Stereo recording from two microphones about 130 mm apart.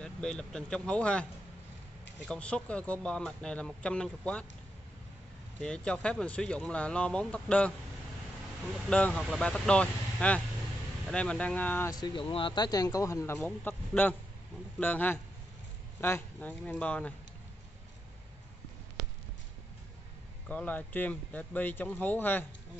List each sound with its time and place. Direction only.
0.0 s speech: 5° left (ahead or behind)
2.2 s speech: 10° left (ahead or behind)
5.6 s speech: 5° left (ahead or behind)
8.8 s speech: 10° left (ahead or behind)
11.9 s speech: 35° left (ahead or behind); by 17.1 s 10° left (ahead or behind)
20.4 s speech: 10° left (ahead or behind)